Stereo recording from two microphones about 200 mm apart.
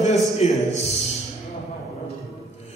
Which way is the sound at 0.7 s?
35° left (ahead or behind).